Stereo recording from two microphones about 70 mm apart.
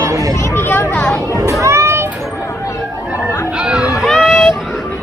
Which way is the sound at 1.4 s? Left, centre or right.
Right.